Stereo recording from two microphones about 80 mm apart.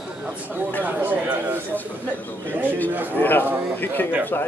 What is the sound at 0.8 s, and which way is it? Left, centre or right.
Speech, right.